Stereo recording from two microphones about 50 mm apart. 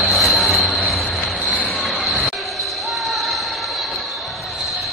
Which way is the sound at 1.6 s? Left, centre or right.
Centre.